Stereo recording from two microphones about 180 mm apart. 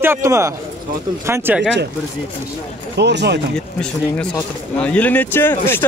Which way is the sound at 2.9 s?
70° right (ahead or behind).